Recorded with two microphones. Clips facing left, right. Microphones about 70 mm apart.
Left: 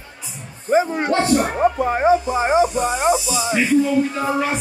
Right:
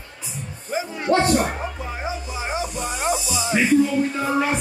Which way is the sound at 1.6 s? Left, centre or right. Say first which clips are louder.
Left 13 dB; left.